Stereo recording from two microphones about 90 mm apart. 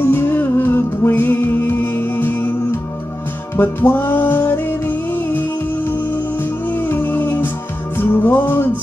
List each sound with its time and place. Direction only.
0.0 s music: 25° left (ahead or behind)
6.7 s music: 25° left (ahead or behind)